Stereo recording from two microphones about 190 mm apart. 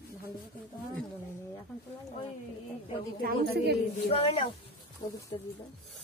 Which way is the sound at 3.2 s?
60° right (ahead or behind).